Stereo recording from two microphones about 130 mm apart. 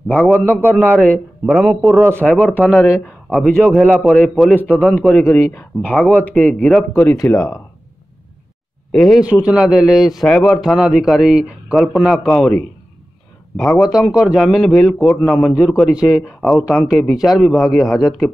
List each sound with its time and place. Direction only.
0.1 s speech: 10° left (ahead or behind)
2.2 s speech: 10° left (ahead or behind)
3.4 s speech: 5° left (ahead or behind); by 7.3 s 20° left (ahead or behind)
8.9 s speech: centre (ahead or behind)
9.2 s speech: 10° right (ahead or behind)